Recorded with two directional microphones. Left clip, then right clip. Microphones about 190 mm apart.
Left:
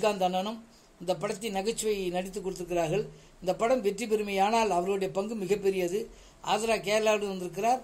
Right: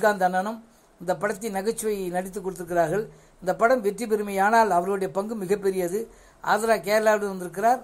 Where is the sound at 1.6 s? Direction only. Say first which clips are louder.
Right 3 dB; 55° right (ahead or behind).